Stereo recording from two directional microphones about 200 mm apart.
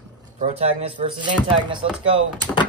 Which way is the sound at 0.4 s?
35° right (ahead or behind).